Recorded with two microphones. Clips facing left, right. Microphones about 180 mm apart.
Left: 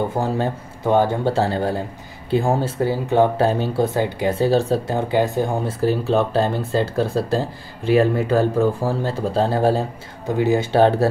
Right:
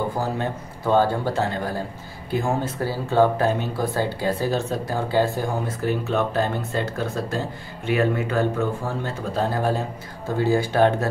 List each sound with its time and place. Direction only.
0.2 s speech: 25° left (ahead or behind)
1.3 s speech: 30° left (ahead or behind)
2.9 s speech: 20° left (ahead or behind)
3.4 s speech: 30° left (ahead or behind)
4.9 s speech: 15° left (ahead or behind)
5.7 s speech: 30° left (ahead or behind)
10.2 s speech: 20° left (ahead or behind)